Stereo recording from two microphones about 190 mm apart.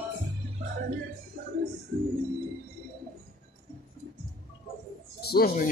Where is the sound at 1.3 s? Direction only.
50° right (ahead or behind).